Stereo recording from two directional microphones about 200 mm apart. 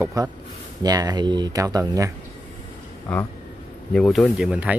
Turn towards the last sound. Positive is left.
turn(degrees=-5)  # may be behind; listen again after turning